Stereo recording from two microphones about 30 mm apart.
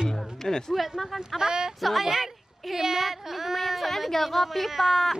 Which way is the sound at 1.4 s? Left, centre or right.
Right.